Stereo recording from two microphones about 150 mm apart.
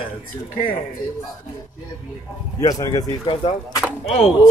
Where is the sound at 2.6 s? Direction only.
25° left (ahead or behind).